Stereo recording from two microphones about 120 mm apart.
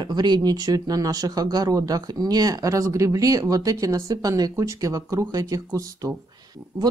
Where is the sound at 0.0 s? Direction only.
35° right (ahead or behind).